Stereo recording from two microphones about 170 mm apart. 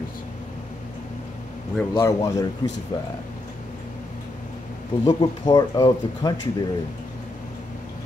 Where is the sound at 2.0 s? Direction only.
15° left (ahead or behind).